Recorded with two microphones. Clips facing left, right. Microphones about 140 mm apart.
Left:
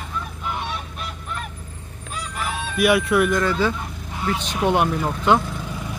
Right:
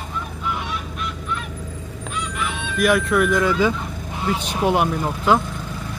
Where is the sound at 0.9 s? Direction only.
40° left (ahead or behind).